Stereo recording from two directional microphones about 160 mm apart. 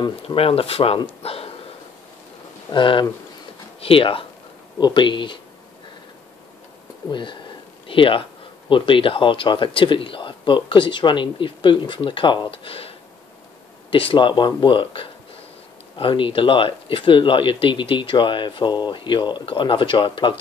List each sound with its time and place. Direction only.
0.0 s speech: 35° left (ahead or behind)
1.2 s a sound: 40° left (ahead or behind)
2.7 s speech: 30° left (ahead or behind)
7.1 s speech: 30° left (ahead or behind)